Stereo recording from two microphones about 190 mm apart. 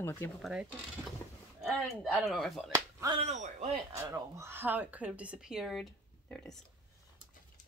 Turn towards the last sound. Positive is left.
turn(degrees=5)  # may be behind; listen again after turning